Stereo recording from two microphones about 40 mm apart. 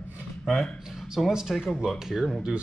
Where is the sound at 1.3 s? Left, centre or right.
Centre.